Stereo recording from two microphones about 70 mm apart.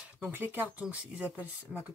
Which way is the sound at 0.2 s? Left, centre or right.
Right.